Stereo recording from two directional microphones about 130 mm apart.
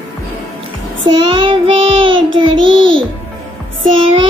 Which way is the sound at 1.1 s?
40° right (ahead or behind).